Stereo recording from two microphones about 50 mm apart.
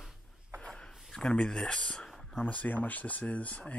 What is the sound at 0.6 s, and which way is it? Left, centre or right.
Writing, centre.